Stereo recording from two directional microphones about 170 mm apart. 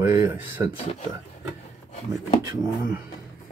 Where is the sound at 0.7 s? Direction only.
35° left (ahead or behind).